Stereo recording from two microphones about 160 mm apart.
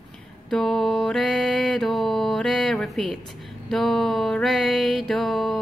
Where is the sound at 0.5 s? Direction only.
Centre (ahead or behind).